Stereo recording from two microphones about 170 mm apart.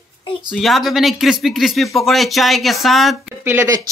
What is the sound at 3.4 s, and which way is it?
Speech, 15° right (ahead or behind).